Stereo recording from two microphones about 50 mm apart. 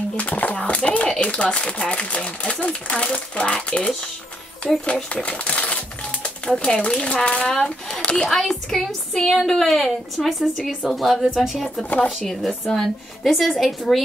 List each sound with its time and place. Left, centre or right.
0.2 s a sound: left
1.1 s speech: left
4.6 s a woman's voice: centre
5.1 s typewriter: left
7.2 s speech: centre
7.5 s speech: centre
8.0 s speech: left
8.3 s a woman's voice: centre
11.3 s speech: centre
12.2 s a woman's voice: centre